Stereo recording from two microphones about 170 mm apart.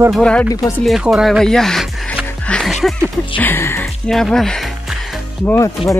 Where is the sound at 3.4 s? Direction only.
15° left (ahead or behind).